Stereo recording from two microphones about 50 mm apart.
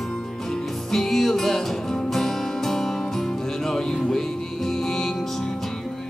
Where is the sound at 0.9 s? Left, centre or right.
Centre.